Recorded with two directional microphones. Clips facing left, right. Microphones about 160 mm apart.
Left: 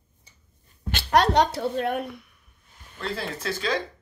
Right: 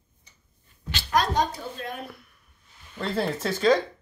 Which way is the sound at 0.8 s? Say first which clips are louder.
Left 4 dB; 60° left (ahead or behind).